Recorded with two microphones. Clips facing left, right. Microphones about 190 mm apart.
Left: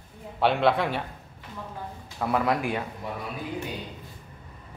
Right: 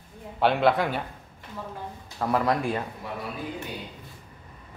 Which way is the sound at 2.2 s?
5° left (ahead or behind).